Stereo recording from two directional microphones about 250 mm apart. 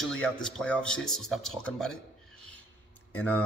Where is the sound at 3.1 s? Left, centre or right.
Centre.